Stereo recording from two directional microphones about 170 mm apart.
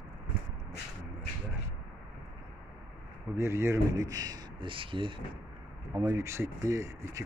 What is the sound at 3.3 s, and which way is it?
Speech, 15° right (ahead or behind).